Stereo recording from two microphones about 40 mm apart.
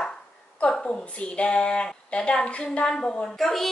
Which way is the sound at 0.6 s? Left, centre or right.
Left.